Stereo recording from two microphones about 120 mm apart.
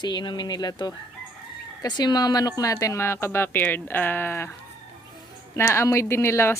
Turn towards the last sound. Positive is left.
turn(degrees=20)  # may be behind; listen again after turning